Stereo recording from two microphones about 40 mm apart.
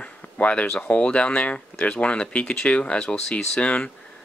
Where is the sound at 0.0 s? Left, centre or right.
Left.